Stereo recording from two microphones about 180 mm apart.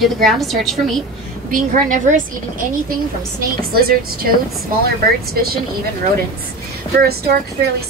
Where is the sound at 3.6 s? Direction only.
55° right (ahead or behind).